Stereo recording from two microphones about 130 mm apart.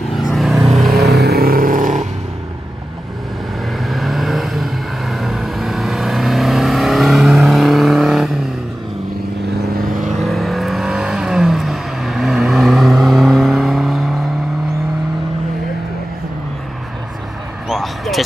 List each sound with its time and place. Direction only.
0.3 s vehicle: centre (ahead or behind)
1.6 s vehicle: 90° right
3.7 s vehicle: centre (ahead or behind)
10.2 s vehicle: centre (ahead or behind)
17.6 s a sound: centre (ahead or behind)